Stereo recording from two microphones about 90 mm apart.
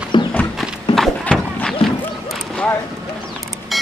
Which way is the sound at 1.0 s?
5° left (ahead or behind).